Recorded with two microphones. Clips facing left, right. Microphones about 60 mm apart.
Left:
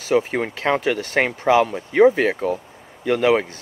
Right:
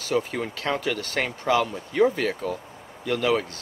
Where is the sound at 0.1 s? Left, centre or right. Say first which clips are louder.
Left 6 dB; left.